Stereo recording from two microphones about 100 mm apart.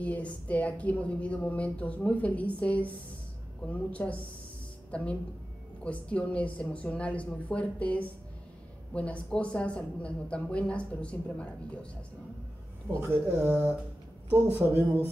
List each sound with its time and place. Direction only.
0.0 s a woman's voice: 15° left (ahead or behind)
13.1 s a woman's voice: 20° right (ahead or behind)